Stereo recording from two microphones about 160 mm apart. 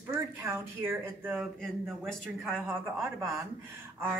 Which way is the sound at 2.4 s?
15° right (ahead or behind).